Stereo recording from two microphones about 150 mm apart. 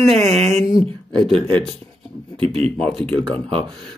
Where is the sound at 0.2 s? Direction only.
45° right (ahead or behind).